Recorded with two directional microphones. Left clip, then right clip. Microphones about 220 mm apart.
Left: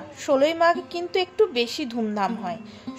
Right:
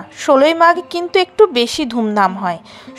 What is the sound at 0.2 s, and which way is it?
A woman's voice, 25° right (ahead or behind).